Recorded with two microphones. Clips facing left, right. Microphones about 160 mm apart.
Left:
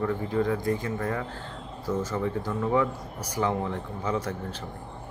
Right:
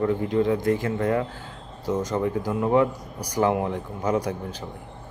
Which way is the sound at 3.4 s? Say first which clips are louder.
Right 5 dB; 60° right (ahead or behind).